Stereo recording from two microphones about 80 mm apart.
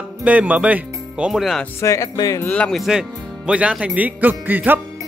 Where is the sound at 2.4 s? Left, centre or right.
Centre.